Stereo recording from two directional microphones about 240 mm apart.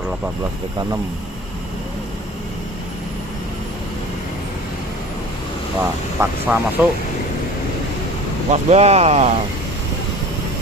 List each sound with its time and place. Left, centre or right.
5.8 s speech: centre
8.5 s speech: right